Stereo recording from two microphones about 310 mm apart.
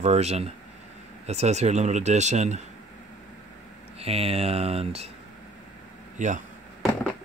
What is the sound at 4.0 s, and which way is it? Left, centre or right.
Speech, centre.